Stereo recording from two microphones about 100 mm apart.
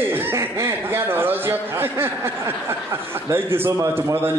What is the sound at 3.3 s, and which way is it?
A man's voice, 25° right (ahead or behind).